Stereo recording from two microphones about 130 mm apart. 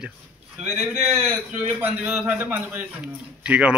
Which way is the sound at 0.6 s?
5° right (ahead or behind).